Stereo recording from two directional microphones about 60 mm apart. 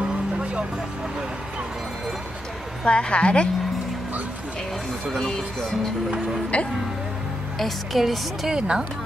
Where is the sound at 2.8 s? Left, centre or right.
Centre.